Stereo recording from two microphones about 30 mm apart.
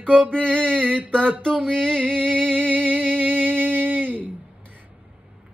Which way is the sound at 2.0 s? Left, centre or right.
Right.